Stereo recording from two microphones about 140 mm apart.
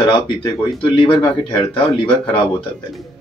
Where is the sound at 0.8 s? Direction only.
35° left (ahead or behind).